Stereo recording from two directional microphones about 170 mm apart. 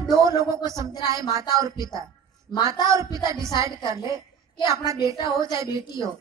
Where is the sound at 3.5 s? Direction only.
20° right (ahead or behind).